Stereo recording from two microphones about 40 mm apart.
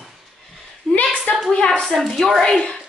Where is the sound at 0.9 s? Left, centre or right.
Centre.